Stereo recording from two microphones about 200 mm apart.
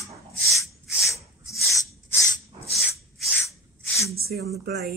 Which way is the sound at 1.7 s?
15° left (ahead or behind).